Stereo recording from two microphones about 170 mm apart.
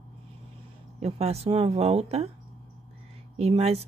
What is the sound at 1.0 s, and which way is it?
Speech, 35° right (ahead or behind).